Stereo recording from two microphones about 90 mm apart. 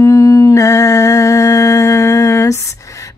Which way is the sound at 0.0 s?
35° left (ahead or behind).